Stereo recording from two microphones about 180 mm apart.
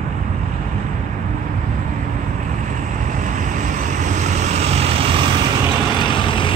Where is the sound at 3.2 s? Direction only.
45° right (ahead or behind).